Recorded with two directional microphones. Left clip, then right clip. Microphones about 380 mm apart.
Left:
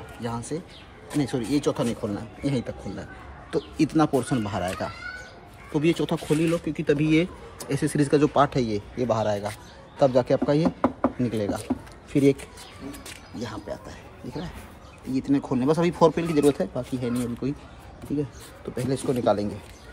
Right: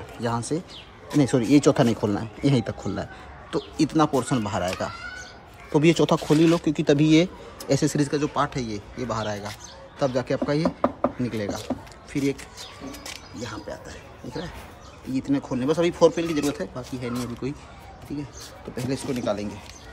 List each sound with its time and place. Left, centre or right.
0.2 s speech: centre
13.4 s speech: centre
18.1 s speech: left
18.9 s speech: centre